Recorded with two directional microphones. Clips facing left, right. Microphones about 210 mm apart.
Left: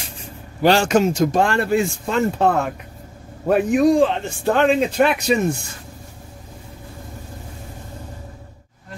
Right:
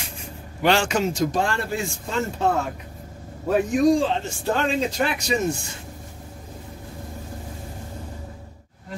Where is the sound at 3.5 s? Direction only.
60° left (ahead or behind).